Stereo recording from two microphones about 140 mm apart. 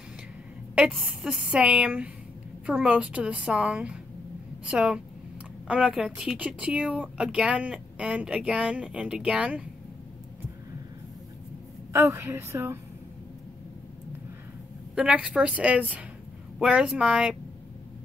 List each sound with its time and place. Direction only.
0.7 s speech: 5° right (ahead or behind)
11.9 s a woman's voice: 20° right (ahead or behind)
15.0 s speech: 10° right (ahead or behind)